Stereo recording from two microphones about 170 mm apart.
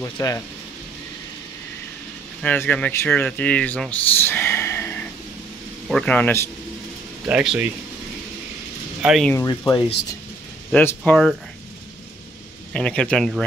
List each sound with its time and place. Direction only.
0.0 s speech: 20° left (ahead or behind)
2.4 s speech: 10° left (ahead or behind)
7.2 s speech: 10° right (ahead or behind)
9.0 s speech: centre (ahead or behind)
9.3 s speech: 20° left (ahead or behind)
10.7 s speech: 10° left (ahead or behind)
12.7 s speech: 5° left (ahead or behind)